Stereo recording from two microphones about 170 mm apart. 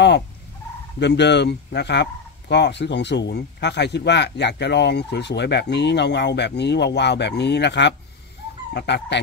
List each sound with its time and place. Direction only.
0.9 s speech: 85° left